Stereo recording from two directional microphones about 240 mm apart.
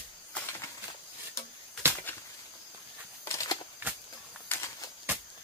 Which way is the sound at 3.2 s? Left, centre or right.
Centre.